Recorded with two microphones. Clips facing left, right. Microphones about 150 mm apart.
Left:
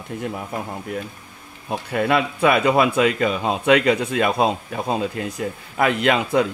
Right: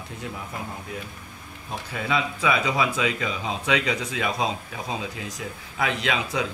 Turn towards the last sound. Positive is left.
turn(degrees=55)  # may be behind; listen again after turning